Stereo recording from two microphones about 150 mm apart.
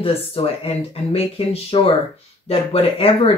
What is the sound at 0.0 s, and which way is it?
Speech, 40° left (ahead or behind).